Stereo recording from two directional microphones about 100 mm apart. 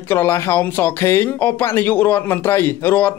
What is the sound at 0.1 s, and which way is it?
Speech, 25° left (ahead or behind).